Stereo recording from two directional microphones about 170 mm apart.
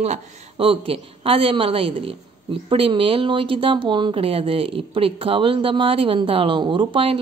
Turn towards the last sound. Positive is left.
turn(degrees=-30)  # may be behind; listen again after turning